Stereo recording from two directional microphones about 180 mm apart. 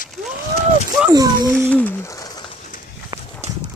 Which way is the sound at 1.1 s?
20° right (ahead or behind).